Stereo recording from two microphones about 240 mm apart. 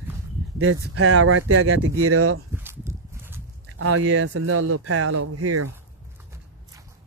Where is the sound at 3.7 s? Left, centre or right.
Right.